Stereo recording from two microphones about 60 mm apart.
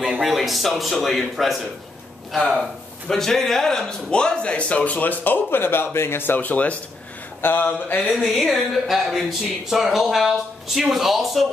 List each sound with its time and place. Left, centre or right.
0.2 s a man's voice: centre; by 6.8 s left
7.4 s a sound: left
8.2 s speech: centre